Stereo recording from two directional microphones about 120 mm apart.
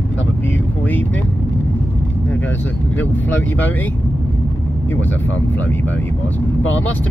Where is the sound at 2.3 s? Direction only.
15° left (ahead or behind).